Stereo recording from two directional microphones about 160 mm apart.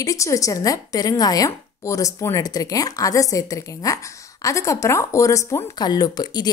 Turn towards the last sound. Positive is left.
turn(degrees=25)  # may be behind; listen again after turning